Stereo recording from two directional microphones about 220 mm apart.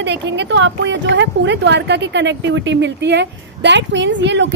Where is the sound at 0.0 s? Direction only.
50° right (ahead or behind).